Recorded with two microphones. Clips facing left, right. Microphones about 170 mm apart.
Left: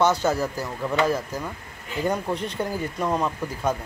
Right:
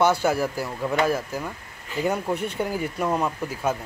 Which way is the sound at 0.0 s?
10° right (ahead or behind).